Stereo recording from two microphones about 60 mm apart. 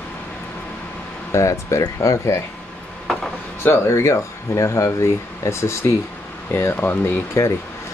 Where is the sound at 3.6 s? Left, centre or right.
Left.